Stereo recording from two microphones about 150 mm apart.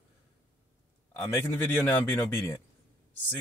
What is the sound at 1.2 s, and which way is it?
Speech, 15° left (ahead or behind).